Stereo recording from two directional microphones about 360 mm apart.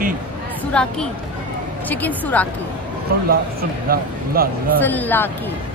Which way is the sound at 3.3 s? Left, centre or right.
Right.